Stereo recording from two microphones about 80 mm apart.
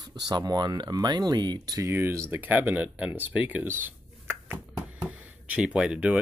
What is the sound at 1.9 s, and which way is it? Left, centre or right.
Speech, right.